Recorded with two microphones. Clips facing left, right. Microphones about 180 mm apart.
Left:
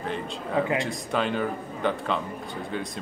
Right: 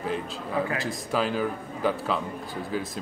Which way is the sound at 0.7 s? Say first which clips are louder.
Left 1 dB; centre (ahead or behind).